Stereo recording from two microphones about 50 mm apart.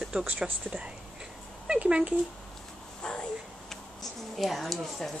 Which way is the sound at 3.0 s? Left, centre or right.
Centre.